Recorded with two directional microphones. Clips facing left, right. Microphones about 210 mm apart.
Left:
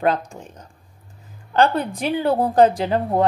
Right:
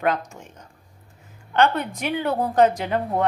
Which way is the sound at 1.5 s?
35° left (ahead or behind).